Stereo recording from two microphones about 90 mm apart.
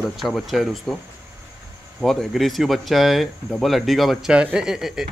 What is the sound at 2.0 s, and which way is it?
Speech, centre (ahead or behind).